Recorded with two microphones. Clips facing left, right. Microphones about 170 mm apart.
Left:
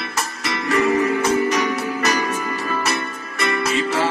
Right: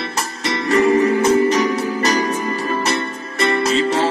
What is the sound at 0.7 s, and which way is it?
Music, 30° right (ahead or behind).